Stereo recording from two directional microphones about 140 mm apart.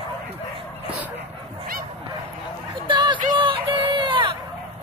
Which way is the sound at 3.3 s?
35° right (ahead or behind).